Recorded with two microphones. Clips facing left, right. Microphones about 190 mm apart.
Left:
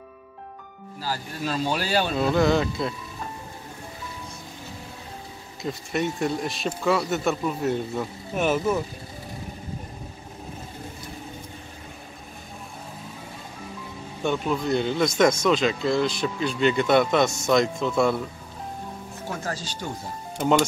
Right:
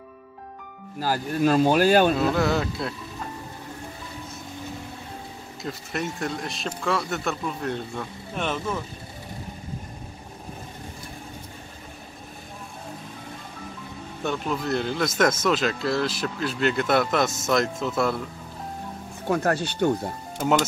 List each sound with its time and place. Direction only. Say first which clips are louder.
1.0 s speech: right 8 dB; 50° right (ahead or behind)
2.1 s speech: left 2 dB; 5° right (ahead or behind)
5.6 s speech: left 4 dB; centre (ahead or behind)
14.2 s speech: left 2 dB; centre (ahead or behind)
19.2 s speech: right 9 dB; 60° right (ahead or behind)